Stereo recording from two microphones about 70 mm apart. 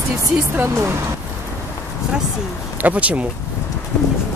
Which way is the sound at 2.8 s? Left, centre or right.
Centre.